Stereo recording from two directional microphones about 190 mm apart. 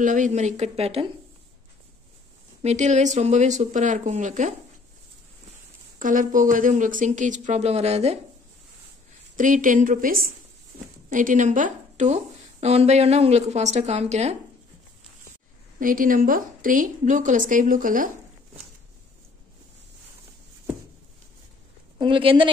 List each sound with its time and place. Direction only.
0.0 s a woman's voice: 40° right (ahead or behind)
2.6 s a woman's voice: 40° right (ahead or behind)
5.9 s a woman's voice: 45° right (ahead or behind)
9.4 s a woman's voice: 45° right (ahead or behind)
15.8 s a woman's voice: 45° right (ahead or behind)
21.9 s a woman's voice: 25° right (ahead or behind)